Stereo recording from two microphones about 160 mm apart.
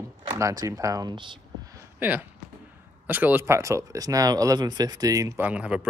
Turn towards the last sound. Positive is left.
turn(degrees=-10)  # may be behind; listen again after turning